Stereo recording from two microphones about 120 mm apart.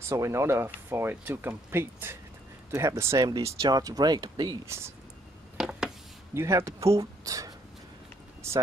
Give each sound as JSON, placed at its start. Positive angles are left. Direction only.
{"t": 0.1, "sound": "speech", "side_deg": -25}
{"t": 5.6, "sound": "a sound", "side_deg": -5}
{"t": 6.3, "sound": "speech", "side_deg": -20}